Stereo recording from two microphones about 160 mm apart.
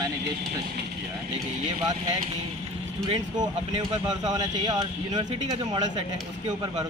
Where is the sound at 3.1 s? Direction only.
25° right (ahead or behind).